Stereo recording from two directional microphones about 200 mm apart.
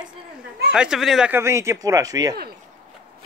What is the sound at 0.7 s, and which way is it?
Speech, 5° right (ahead or behind).